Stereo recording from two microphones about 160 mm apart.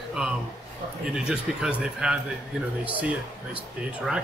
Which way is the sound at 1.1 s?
5° right (ahead or behind).